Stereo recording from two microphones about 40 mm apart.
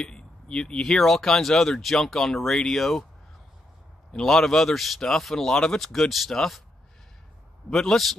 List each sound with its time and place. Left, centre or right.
0.0 s speech: left
4.1 s speech: centre
5.8 s speech: centre
7.7 s speech: centre